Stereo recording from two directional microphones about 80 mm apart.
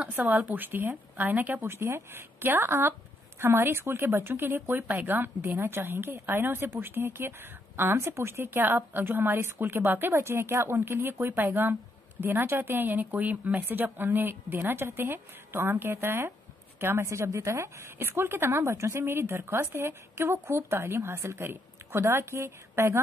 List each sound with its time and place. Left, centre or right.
0.1 s a woman's voice: right